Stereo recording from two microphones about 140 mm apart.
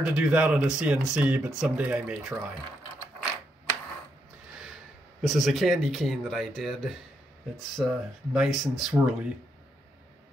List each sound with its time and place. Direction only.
0.0 s speech: 5° right (ahead or behind)
5.2 s speech: centre (ahead or behind)